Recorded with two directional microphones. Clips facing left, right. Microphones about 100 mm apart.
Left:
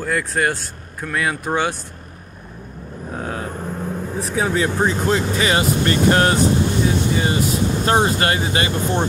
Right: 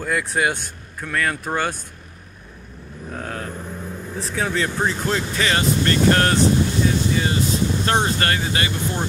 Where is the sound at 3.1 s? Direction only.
10° left (ahead or behind).